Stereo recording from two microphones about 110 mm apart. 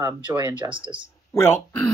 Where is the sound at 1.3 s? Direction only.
25° left (ahead or behind).